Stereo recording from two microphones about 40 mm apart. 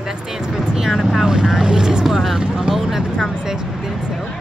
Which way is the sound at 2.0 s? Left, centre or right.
Centre.